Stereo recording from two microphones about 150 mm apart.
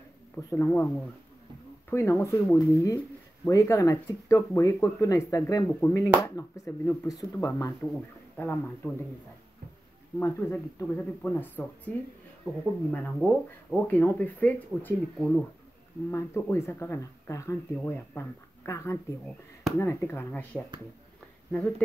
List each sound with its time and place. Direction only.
0.4 s speech: 20° left (ahead or behind)
10.1 s speech: 15° left (ahead or behind)
12.9 s speech: 10° left (ahead or behind)
16.1 s speech: 15° left (ahead or behind)